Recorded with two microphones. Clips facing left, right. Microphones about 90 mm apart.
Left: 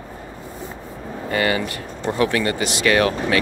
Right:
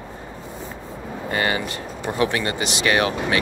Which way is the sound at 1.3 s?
25° right (ahead or behind).